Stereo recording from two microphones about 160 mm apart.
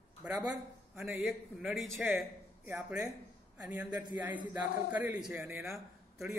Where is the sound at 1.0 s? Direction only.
5° right (ahead or behind).